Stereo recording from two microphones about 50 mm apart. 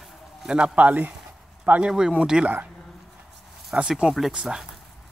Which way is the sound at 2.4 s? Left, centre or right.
Right.